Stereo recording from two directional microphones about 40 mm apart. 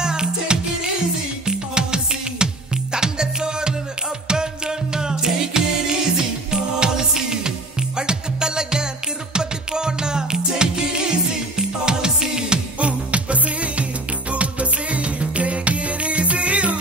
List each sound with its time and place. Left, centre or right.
0.0 s music: centre
12.7 s music: right